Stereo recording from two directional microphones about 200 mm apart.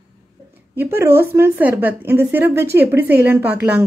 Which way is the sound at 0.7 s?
10° right (ahead or behind).